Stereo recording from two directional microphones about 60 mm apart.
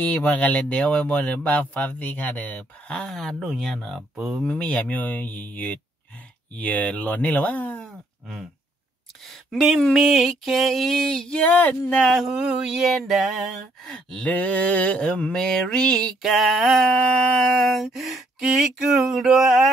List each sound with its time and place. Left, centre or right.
0.0 s speech: left; by 4.3 s centre
4.5 s speech: left
9.2 s a sound: centre
11.4 s speech: left
12.3 s speech: centre
13.0 s a sound: centre
13.8 s mantra: centre
14.3 s speech: left
15.3 s mantra: centre
16.2 s a sound: centre
16.8 s mantra: centre
17.6 s a sound: centre